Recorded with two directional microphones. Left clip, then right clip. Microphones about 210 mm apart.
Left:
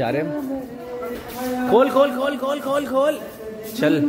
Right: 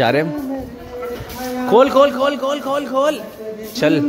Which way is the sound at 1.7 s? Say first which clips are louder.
Right 5 dB; 15° right (ahead or behind).